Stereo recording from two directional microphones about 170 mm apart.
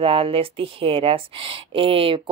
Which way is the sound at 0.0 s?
35° right (ahead or behind).